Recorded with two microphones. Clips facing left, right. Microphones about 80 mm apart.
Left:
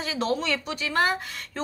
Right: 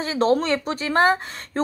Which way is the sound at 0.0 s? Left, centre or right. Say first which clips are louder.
Right 7 dB; right.